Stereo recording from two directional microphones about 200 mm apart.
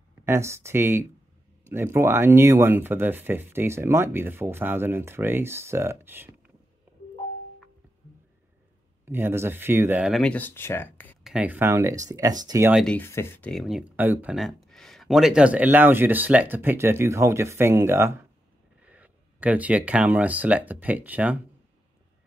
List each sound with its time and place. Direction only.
0.2 s speech: 15° right (ahead or behind)
9.0 s speech: 10° right (ahead or behind); by 11.1 s 10° left (ahead or behind)
11.2 s speech: 5° right (ahead or behind)
12.7 s speech: 5° left (ahead or behind)